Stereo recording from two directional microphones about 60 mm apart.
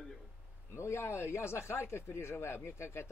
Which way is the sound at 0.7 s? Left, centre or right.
Left.